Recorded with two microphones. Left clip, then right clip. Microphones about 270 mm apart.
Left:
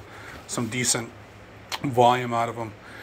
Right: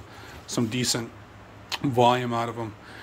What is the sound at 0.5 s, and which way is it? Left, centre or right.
Speech, right.